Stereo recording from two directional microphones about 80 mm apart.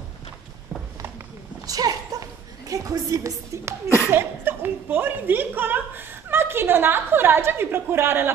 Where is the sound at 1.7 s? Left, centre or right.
Right.